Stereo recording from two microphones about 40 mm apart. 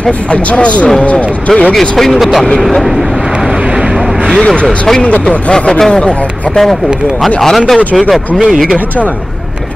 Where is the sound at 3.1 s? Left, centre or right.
Right.